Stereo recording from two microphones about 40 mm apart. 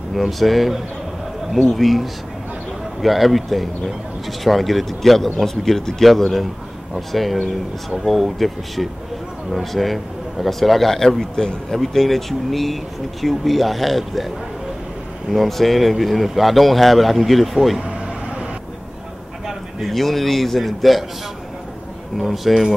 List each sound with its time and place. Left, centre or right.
0.1 s speech: centre
15.3 s speech: centre
19.4 s a man's voice: centre
22.1 s speech: centre